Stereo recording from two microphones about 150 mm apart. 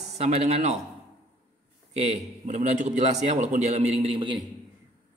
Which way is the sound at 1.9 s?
45° right (ahead or behind).